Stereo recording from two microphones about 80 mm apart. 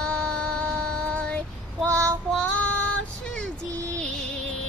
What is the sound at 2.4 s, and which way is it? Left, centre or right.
Child singing, centre.